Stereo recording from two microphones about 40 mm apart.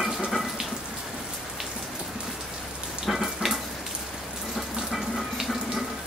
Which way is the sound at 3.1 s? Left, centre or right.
Centre.